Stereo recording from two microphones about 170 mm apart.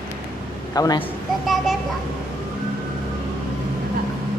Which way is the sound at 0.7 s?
20° left (ahead or behind).